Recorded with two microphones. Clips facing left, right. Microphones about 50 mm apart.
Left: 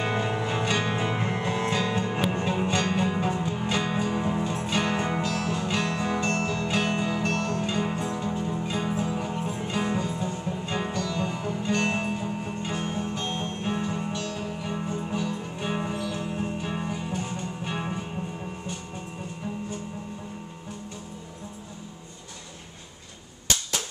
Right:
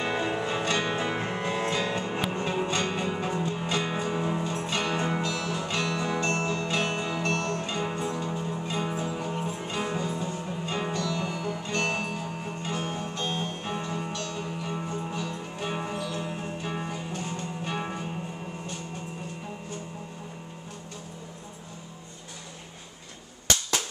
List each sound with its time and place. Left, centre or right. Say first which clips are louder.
0.0 s music: left 1 dB; centre
3.8 s music: left 2 dB; centre
6.3 s music: left 1 dB; right
6.7 s music: left 2 dB; centre